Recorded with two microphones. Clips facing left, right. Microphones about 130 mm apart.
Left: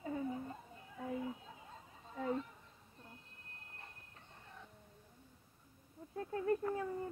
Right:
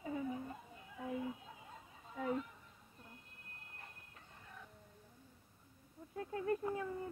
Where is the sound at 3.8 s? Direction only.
30° left (ahead or behind).